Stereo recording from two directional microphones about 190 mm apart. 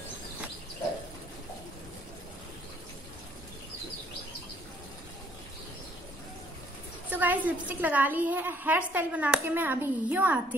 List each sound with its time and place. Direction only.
7.1 s a woman's voice: 10° right (ahead or behind)